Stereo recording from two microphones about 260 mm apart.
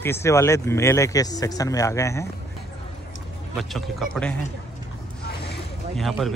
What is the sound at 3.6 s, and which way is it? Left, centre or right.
Speech, centre.